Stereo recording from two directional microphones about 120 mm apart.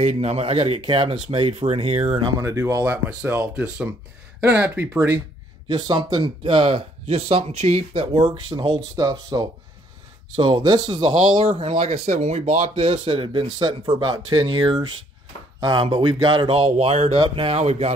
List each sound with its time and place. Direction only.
0.0 s speech: 65° right (ahead or behind)
2.4 s speech: 20° right (ahead or behind)
5.7 s speech: 35° right (ahead or behind); by 17.2 s 55° right (ahead or behind)
17.2 s speech: 45° right (ahead or behind)
17.6 s speech: 60° right (ahead or behind)